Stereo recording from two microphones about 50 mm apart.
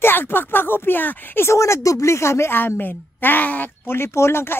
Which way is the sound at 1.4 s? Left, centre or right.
Left.